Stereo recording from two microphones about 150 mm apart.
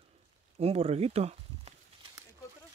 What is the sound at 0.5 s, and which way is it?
Speech, 45° right (ahead or behind).